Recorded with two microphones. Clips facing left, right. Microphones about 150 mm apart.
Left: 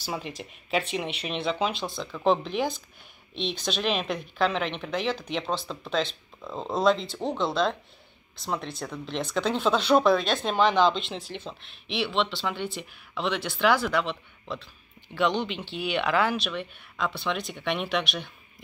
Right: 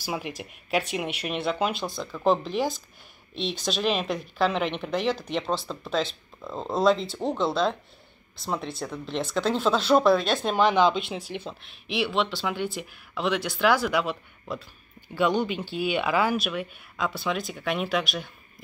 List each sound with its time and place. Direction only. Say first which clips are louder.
0.0 s speech: right 2 dB; 10° right (ahead or behind)
1.7 s speech: right 2 dB; 50° right (ahead or behind)
2.0 s speech: right 1 dB; 5° right (ahead or behind)